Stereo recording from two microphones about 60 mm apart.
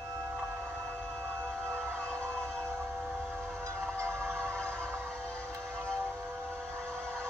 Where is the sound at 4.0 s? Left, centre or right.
Right.